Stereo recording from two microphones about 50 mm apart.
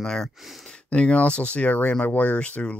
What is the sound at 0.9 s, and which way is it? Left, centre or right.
Speech, left.